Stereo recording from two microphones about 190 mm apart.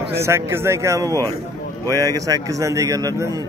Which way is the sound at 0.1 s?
15° right (ahead or behind).